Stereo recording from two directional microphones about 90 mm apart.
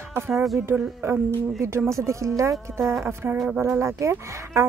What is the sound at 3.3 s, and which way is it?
Speech, 5° right (ahead or behind).